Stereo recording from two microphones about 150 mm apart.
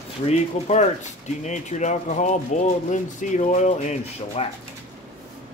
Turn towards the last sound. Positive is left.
turn(degrees=40)  # may be behind; listen again after turning